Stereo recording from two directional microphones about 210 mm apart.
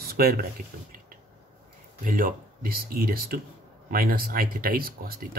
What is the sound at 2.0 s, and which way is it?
Speech, 40° right (ahead or behind).